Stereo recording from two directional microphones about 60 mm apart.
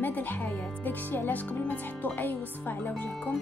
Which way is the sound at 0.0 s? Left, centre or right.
Left.